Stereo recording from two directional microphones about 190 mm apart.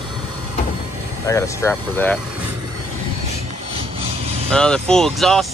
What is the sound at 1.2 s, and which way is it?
Speech, 15° left (ahead or behind).